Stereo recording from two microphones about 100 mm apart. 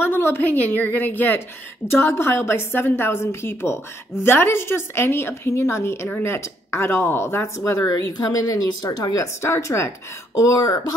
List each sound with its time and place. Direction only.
0.0 s a woman's voice: 25° left (ahead or behind)